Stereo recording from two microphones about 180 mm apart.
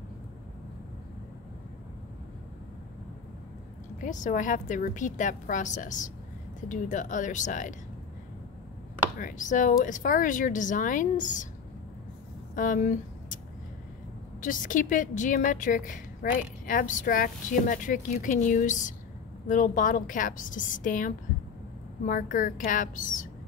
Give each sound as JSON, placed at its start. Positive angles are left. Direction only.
{"t": 4.0, "sound": "a woman's voice", "side_deg": 45}
{"t": 9.2, "sound": "a woman's voice", "side_deg": 45}
{"t": 12.5, "sound": "a woman's voice", "side_deg": 45}
{"t": 14.4, "sound": "a woman's voice", "side_deg": 45}